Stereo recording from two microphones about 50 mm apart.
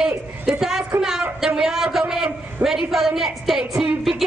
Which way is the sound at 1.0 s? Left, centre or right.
Centre.